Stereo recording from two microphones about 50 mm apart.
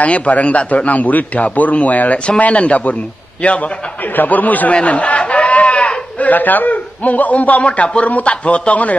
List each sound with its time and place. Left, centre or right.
0.0 s a man's voice: left